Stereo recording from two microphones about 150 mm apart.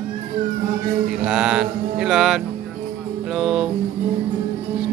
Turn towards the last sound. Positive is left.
turn(degrees=-5)  # may be behind; listen again after turning